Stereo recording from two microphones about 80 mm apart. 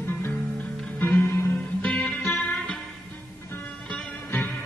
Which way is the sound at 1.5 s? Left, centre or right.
Centre.